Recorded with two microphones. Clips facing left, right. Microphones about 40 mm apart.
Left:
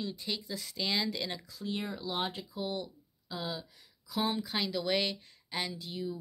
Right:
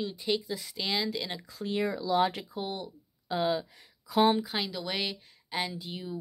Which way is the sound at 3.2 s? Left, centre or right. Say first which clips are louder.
Right 10 dB; right.